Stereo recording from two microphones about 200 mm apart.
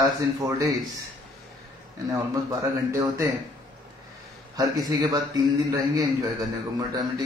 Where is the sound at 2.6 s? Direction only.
15° right (ahead or behind).